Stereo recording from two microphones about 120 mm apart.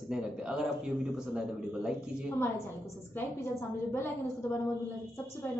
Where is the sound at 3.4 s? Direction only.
20° left (ahead or behind).